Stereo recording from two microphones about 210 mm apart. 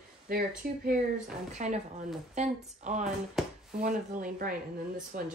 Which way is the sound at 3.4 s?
Centre (ahead or behind).